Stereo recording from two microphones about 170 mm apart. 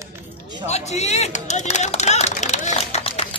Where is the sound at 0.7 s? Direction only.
40° left (ahead or behind).